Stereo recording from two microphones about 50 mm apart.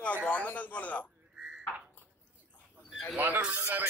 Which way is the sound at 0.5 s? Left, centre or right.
Left.